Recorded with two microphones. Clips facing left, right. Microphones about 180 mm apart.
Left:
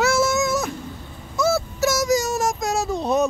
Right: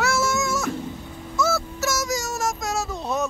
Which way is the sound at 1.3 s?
Centre (ahead or behind).